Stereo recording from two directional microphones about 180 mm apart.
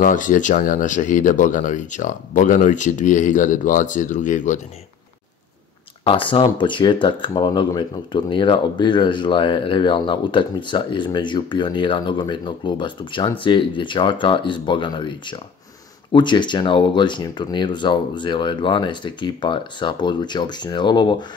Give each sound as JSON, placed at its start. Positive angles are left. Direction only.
{"t": 0.0, "sound": "speech", "side_deg": 45}
{"t": 6.0, "sound": "speech", "side_deg": 30}